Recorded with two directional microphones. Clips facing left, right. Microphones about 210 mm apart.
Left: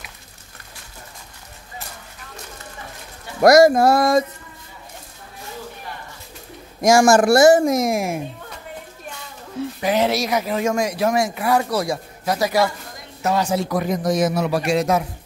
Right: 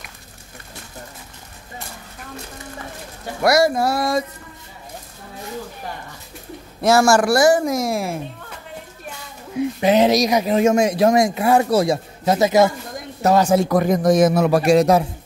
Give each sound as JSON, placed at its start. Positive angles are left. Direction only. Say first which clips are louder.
{"t": 3.4, "sound": "music", "louder": "left 5 dB", "side_deg": 45}
{"t": 6.8, "sound": "a woman's voice", "louder": "left 1 dB", "side_deg": 15}
{"t": 9.6, "sound": "speech", "louder": "right 4 dB", "side_deg": -20}
{"t": 13.2, "sound": "a man's voice", "louder": "right 5 dB", "side_deg": -45}